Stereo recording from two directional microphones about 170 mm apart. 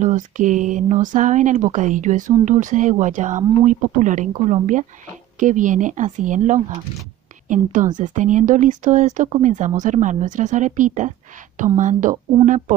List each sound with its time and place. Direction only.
0.0 s speech: 50° right (ahead or behind)